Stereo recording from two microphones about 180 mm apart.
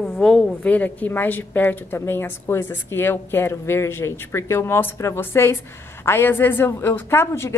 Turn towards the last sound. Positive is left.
turn(degrees=15)  # may be behind; listen again after turning